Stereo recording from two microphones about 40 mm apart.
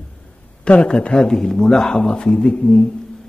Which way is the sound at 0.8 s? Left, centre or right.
Left.